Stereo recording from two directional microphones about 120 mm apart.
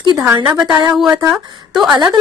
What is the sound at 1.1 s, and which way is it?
Speech, 30° right (ahead or behind).